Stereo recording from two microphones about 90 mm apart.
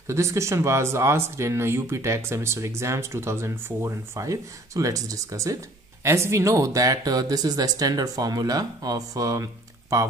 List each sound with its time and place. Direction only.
0.0 s speech: 35° right (ahead or behind)